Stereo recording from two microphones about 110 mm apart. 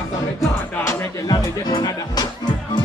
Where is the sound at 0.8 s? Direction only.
35° left (ahead or behind).